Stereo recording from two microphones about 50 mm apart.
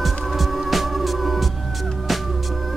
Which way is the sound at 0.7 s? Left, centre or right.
Centre.